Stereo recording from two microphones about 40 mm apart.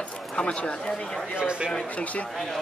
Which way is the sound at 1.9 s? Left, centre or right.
Left.